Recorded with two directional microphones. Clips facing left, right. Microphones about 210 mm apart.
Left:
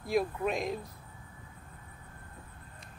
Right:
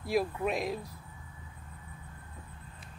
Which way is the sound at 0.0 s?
Centre (ahead or behind).